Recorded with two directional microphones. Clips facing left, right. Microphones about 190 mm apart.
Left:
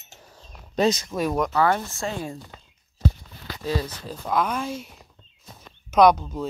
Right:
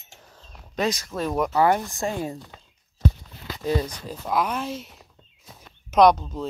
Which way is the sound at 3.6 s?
20° right (ahead or behind).